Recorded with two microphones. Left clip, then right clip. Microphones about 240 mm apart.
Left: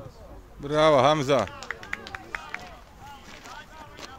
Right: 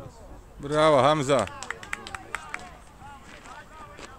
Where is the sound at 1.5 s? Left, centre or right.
Right.